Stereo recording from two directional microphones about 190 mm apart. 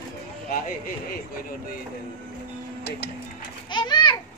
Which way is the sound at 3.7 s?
25° left (ahead or behind).